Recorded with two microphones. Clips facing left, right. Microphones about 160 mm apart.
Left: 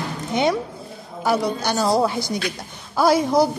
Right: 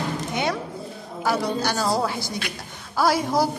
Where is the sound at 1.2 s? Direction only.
20° left (ahead or behind).